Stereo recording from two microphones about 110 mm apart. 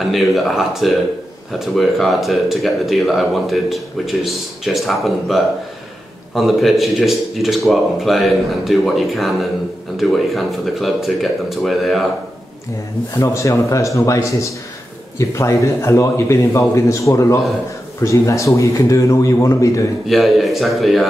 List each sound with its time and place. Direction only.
0.1 s speech: centre (ahead or behind)
13.1 s a man's voice: 30° left (ahead or behind)
20.1 s speech: centre (ahead or behind)